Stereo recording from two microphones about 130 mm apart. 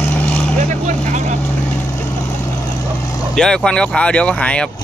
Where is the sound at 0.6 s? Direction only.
65° right (ahead or behind).